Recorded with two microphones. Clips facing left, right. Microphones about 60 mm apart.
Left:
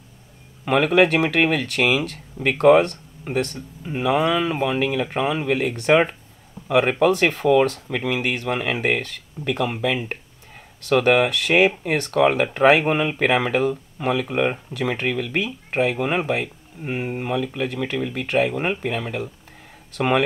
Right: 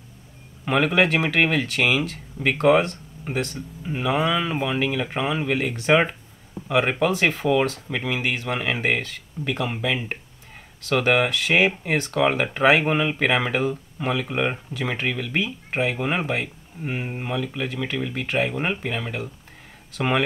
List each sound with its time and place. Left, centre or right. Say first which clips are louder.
0.7 s speech: left 3 dB; centre